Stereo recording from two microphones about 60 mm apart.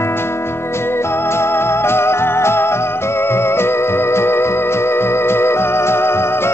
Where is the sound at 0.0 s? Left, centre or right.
Left.